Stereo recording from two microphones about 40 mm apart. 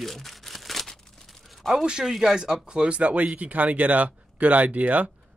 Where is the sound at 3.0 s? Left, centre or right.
Right.